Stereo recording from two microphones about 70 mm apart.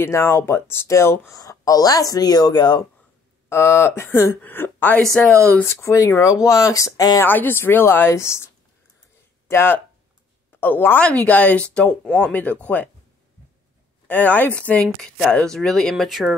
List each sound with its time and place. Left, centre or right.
0.0 s a woman's voice: left
1.3 s speech: left
3.4 s a woman's voice: left
5.1 s speech: centre
5.6 s speech: left
7.2 s a woman's voice: left
9.5 s a woman's voice: left
11.0 s speech: centre
14.0 s speech: left
14.8 s speech: centre